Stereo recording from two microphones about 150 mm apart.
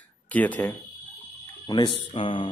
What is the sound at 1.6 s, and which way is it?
Speech, 30° left (ahead or behind).